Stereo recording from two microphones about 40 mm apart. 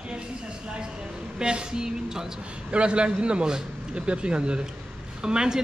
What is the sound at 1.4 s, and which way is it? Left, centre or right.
Speech, right.